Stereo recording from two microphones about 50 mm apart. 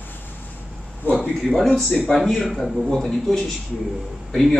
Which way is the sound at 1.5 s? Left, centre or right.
Centre.